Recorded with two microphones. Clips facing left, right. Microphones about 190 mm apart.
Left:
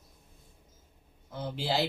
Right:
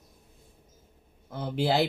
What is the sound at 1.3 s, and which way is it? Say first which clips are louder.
Speech: right 5 dB; 55° right (ahead or behind).